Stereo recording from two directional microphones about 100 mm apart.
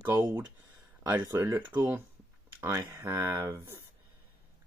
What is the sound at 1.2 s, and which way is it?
Speech, 25° right (ahead or behind).